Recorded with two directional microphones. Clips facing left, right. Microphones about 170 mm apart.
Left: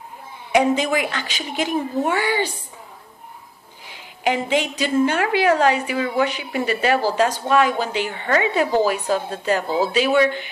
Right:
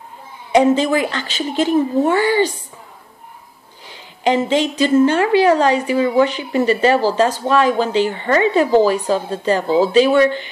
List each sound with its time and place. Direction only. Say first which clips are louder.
0.5 s a woman's voice: right 5 dB; 10° left (ahead or behind)
3.8 s a woman's voice: right 4 dB; 10° left (ahead or behind)